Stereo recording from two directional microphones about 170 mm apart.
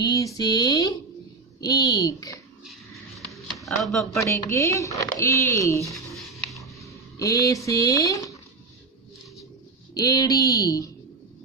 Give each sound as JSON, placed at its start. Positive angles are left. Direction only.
{"t": 0.0, "sound": "a sound", "side_deg": 20}
{"t": 0.4, "sound": "speech", "side_deg": 25}
{"t": 3.3, "sound": "chopping", "side_deg": 0}
{"t": 4.2, "sound": "speech", "side_deg": 15}
{"t": 6.1, "sound": "a sound", "side_deg": 0}
{"t": 6.8, "sound": "speech", "side_deg": 20}
{"t": 9.9, "sound": "speech", "side_deg": 20}